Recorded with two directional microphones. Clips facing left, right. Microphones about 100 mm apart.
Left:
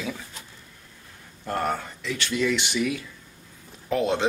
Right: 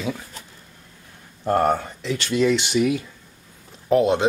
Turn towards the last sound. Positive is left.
turn(degrees=-20)  # may be behind; listen again after turning